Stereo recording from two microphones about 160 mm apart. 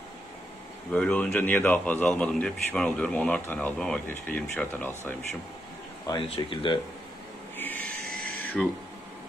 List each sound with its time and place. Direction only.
0.9 s speech: 5° left (ahead or behind)
6.0 s speech: 35° left (ahead or behind)
7.5 s a sound: 10° left (ahead or behind)